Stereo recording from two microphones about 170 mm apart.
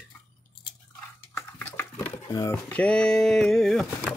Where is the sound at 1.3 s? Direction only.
15° left (ahead or behind).